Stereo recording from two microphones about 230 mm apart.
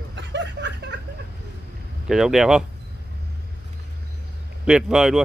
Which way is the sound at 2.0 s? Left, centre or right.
Centre.